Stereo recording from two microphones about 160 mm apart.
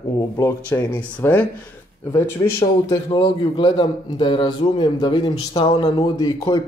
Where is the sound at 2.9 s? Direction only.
30° left (ahead or behind).